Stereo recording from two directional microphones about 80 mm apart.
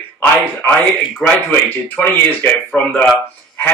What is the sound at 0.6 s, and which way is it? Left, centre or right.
Speech, left.